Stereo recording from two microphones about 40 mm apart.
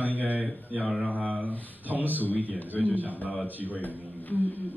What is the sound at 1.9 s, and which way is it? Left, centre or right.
Speech, right.